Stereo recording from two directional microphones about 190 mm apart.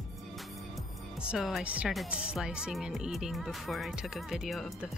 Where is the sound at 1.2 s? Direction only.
5° right (ahead or behind).